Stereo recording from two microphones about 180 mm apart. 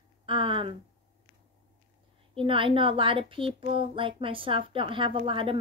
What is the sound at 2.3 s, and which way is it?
A woman's voice, 30° right (ahead or behind).